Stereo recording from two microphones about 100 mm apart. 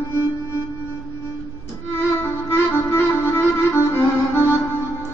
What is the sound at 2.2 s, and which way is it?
Music, 25° left (ahead or behind).